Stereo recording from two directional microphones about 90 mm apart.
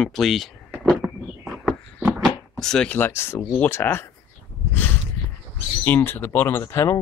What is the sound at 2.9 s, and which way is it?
Speech, 25° left (ahead or behind).